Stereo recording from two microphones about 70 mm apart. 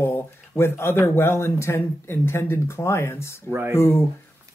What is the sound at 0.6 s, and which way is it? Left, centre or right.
Speech, left.